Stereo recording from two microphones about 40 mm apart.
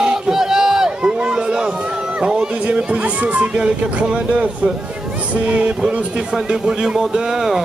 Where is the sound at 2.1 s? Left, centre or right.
Right.